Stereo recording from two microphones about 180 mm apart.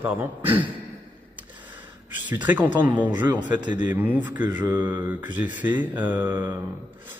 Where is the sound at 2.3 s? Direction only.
10° right (ahead or behind).